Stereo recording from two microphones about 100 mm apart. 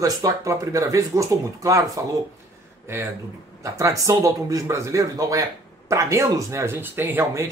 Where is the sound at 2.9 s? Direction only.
25° right (ahead or behind).